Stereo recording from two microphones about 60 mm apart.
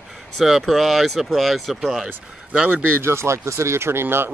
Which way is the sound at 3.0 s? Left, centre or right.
Right.